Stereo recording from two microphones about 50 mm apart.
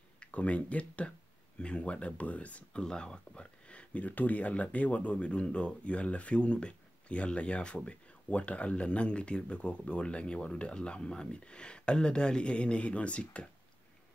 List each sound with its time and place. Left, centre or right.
0.2 s speech: left
2.8 s speech: centre